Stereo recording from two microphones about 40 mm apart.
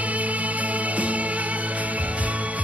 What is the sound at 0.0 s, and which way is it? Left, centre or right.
Music, right.